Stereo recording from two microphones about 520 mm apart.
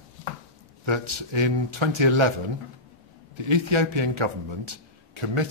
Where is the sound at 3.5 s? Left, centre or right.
Right.